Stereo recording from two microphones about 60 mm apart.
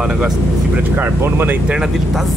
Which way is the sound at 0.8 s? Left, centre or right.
Right.